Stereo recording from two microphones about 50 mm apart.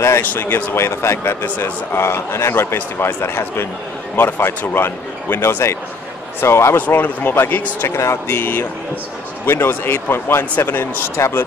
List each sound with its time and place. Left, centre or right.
0.2 s speech: left
0.7 s a man's voice: left
7.3 s speech: left
7.9 s speech: left
8.3 s speech: left
11.1 s speech: left